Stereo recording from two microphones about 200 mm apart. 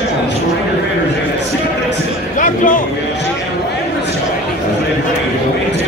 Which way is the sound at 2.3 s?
40° left (ahead or behind).